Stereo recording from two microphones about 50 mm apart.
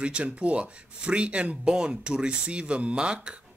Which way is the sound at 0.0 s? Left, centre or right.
Right.